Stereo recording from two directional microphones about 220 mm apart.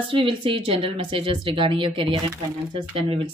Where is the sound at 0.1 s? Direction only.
25° right (ahead or behind).